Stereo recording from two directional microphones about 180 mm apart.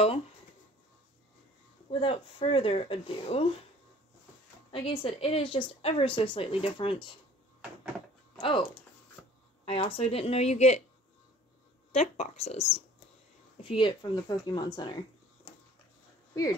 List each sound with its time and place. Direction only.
1.9 s speech: 30° left (ahead or behind)
4.6 s a woman's voice: 30° left (ahead or behind)
8.4 s speech: 30° left (ahead or behind)
9.7 s speech: 30° left (ahead or behind)
11.9 s a woman's voice: 35° left (ahead or behind)